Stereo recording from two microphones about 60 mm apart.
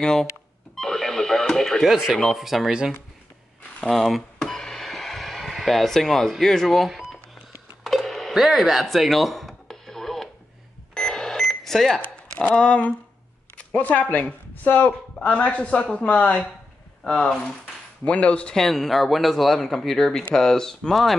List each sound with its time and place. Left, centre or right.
0.0 s speech: centre
0.7 s alarm clock: centre
1.9 s speech: centre
3.9 s a sound: centre
12.0 s a sound: left
12.5 s speech: centre
18.5 s speech: centre